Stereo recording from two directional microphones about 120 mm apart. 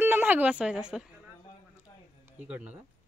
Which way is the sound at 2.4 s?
10° right (ahead or behind).